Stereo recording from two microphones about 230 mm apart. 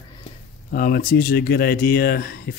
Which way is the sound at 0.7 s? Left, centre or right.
Left.